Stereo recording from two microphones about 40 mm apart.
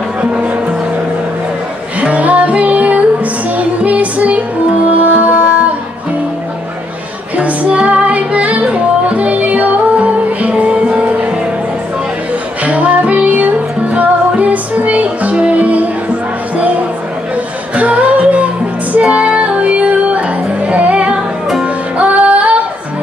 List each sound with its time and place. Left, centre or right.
0.2 s music: right
2.0 s music: right
7.3 s music: right
12.6 s music: right
17.7 s music: right